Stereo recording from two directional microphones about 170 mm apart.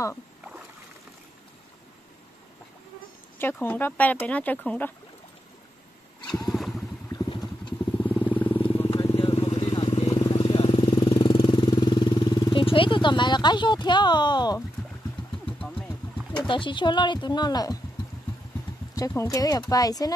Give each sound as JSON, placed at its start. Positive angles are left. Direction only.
{"t": 0.4, "sound": "rowboat", "side_deg": -5}
{"t": 3.3, "sound": "speech", "side_deg": 10}
{"t": 6.5, "sound": "boat", "side_deg": 0}
{"t": 7.1, "sound": "vehicle", "side_deg": 25}
{"t": 8.0, "sound": "vehicle", "side_deg": 10}
{"t": 8.5, "sound": "vehicle", "side_deg": 30}
{"t": 8.8, "sound": "vehicle", "side_deg": 20}
{"t": 9.1, "sound": "vehicle", "side_deg": 35}
{"t": 9.8, "sound": "vehicle", "side_deg": 40}
{"t": 10.2, "sound": "vehicle", "side_deg": 30}
{"t": 10.9, "sound": "vehicle", "side_deg": 20}
{"t": 16.4, "sound": "speech", "side_deg": 30}
{"t": 18.9, "sound": "speech", "side_deg": 20}